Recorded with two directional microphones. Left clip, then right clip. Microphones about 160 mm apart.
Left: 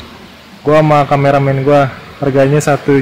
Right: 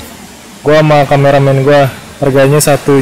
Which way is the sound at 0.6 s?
40° right (ahead or behind).